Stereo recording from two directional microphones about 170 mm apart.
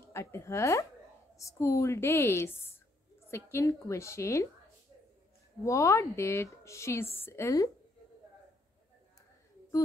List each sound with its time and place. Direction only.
0.1 s a woman's voice: 15° left (ahead or behind)
5.7 s a woman's voice: 20° left (ahead or behind)